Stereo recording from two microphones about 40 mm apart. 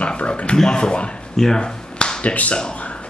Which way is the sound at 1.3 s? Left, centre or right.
Centre.